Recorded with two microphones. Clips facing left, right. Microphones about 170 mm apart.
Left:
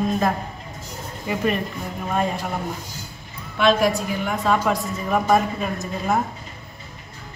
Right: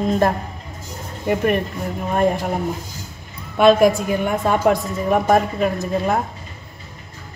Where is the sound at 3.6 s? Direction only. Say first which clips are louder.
Right 6 dB; 50° right (ahead or behind).